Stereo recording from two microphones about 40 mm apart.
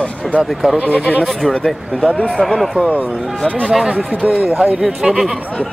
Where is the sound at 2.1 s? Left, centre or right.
Left.